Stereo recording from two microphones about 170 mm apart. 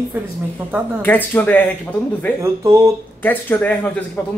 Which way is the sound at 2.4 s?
15° right (ahead or behind).